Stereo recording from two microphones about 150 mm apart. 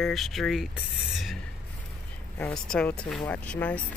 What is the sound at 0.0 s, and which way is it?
Speech, centre (ahead or behind).